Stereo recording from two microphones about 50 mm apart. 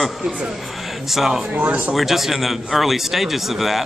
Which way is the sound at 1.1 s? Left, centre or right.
Centre.